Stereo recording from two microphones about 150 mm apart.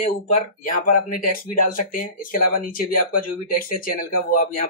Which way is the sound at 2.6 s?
70° left (ahead or behind).